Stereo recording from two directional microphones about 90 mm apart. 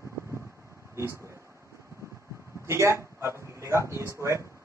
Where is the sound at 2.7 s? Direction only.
30° right (ahead or behind).